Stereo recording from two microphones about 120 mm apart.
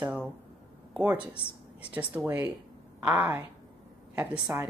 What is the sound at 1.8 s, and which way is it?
Speech, 10° right (ahead or behind).